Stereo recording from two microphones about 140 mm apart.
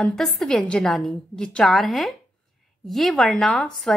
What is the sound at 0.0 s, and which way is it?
Speech, 5° left (ahead or behind).